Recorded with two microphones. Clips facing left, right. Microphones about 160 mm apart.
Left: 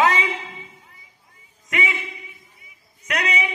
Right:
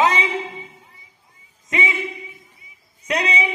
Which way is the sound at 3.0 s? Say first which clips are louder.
Right 3 dB; 30° right (ahead or behind).